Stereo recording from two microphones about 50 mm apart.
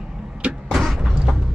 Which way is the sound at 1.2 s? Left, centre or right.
Centre.